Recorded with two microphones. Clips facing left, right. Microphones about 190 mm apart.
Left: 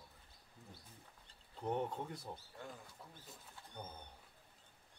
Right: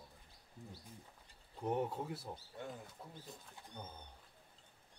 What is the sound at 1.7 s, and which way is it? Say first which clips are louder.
Speech: right 2 dB; 10° right (ahead or behind).